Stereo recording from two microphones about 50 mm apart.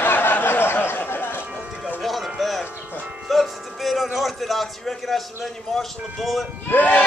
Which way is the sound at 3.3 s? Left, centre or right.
Centre.